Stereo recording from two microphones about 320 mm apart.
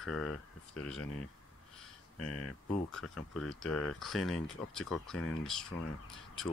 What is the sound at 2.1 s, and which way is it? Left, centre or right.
Speech, left.